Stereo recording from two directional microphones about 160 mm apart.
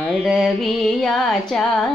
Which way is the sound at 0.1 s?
Centre (ahead or behind).